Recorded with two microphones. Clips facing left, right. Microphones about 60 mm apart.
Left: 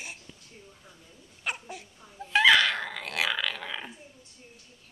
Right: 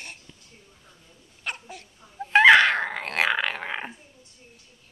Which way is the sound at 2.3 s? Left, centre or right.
Right.